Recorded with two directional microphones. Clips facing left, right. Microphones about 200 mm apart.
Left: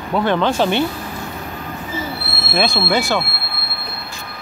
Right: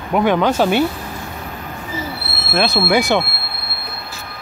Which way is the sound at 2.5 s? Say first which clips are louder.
Right 2 dB; 5° right (ahead or behind).